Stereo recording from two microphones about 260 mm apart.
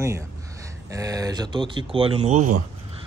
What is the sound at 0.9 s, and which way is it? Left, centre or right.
Speech, centre.